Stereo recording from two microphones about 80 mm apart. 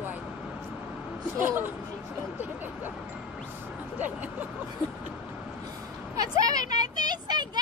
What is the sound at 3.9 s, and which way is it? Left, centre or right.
Speech, right.